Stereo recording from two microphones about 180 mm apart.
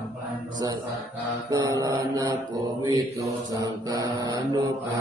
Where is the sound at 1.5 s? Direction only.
20° right (ahead or behind).